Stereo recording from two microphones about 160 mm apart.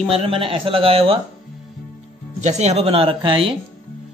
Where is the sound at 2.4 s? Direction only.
45° right (ahead or behind).